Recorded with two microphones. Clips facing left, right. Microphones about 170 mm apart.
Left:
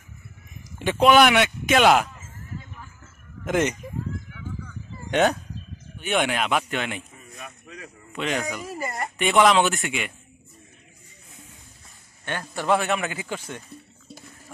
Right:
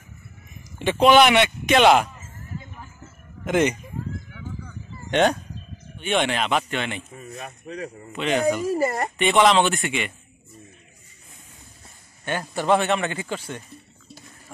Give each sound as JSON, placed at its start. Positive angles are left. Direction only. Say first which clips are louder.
{"t": 0.7, "sound": "speech", "louder": "right 1 dB", "side_deg": 5}
{"t": 3.4, "sound": "speech", "louder": "right 2 dB", "side_deg": 0}
{"t": 5.1, "sound": "speech", "louder": "right 1 dB", "side_deg": 5}
{"t": 7.3, "sound": "speech", "louder": "right 7 dB", "side_deg": -40}
{"t": 8.1, "sound": "speech", "louder": "right 6 dB", "side_deg": 0}
{"t": 12.3, "sound": "speech", "louder": "right 2 dB", "side_deg": -5}